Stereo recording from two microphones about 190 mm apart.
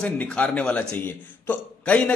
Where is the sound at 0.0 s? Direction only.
5° left (ahead or behind).